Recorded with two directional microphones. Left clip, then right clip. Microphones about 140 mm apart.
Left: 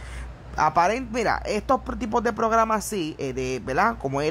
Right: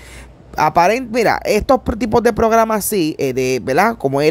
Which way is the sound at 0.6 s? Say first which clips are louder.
Right 8 dB; 25° right (ahead or behind).